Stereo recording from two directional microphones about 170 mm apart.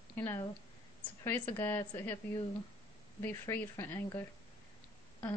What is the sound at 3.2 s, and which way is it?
Speech, 15° left (ahead or behind).